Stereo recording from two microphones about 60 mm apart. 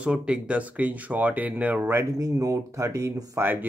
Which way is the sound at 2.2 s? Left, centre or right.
Right.